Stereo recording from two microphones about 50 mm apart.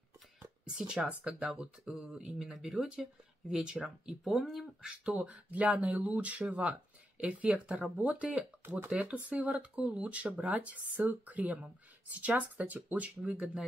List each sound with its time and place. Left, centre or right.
0.7 s speech: centre
1.6 s speech: centre
4.8 s speech: centre
5.2 s speech: right